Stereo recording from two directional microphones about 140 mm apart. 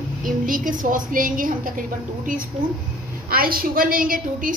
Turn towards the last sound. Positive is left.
turn(degrees=-75)  # may be behind; listen again after turning